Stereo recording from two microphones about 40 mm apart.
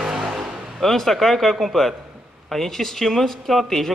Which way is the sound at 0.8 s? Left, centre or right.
Centre.